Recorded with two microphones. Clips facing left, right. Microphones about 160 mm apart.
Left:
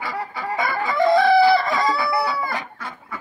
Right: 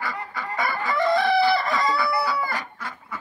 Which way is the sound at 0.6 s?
20° left (ahead or behind).